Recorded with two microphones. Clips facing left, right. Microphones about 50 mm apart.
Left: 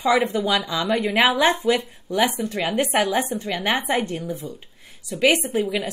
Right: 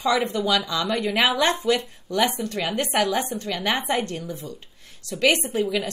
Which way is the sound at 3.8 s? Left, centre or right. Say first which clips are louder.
Left 2 dB; centre.